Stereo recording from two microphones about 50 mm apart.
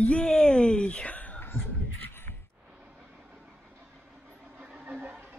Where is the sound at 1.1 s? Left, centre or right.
Left.